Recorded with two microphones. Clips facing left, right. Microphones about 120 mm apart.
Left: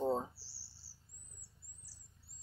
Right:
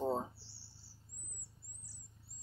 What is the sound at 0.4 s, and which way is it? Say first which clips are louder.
Cricket: right 4 dB; 5° left (ahead or behind).